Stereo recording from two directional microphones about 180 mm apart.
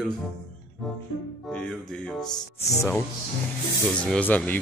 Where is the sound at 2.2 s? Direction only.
20° left (ahead or behind).